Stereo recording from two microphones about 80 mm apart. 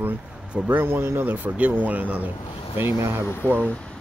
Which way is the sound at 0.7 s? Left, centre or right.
Right.